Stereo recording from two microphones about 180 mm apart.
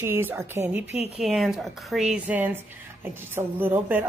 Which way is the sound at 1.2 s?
Centre (ahead or behind).